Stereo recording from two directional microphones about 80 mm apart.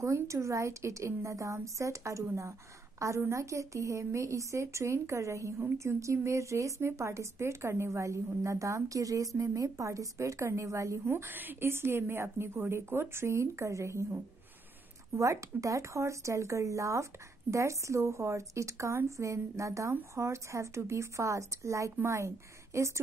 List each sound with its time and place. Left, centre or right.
0.0 s a woman's voice: right